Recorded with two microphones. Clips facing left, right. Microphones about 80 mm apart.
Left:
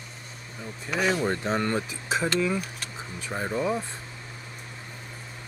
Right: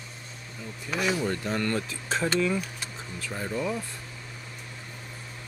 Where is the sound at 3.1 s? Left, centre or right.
Left.